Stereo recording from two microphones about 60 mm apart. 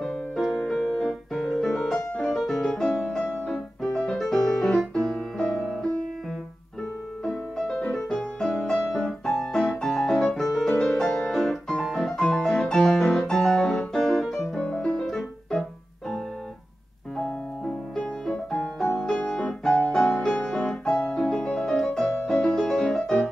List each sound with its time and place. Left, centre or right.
0.0 s music: centre
7.2 s music: centre
17.9 s music: centre